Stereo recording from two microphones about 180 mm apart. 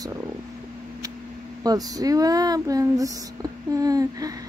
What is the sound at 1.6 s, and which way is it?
Speech, 20° right (ahead or behind).